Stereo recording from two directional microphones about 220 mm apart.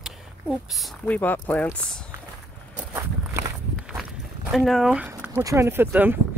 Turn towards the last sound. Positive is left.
turn(degrees=-10)  # may be behind; listen again after turning